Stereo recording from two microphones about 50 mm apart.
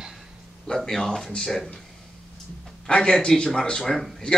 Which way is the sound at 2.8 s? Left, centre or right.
Centre.